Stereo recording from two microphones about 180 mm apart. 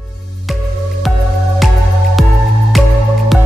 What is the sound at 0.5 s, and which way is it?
Music, centre (ahead or behind).